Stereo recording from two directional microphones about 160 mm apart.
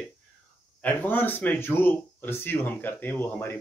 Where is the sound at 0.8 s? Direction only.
10° left (ahead or behind).